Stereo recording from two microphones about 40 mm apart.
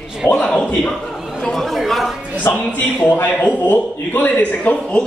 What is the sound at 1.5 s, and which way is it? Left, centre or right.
Speech, centre.